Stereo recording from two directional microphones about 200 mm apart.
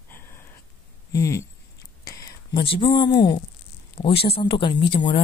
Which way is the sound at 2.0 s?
15° left (ahead or behind).